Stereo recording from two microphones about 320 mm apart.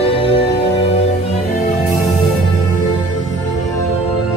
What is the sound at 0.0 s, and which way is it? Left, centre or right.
Music, centre.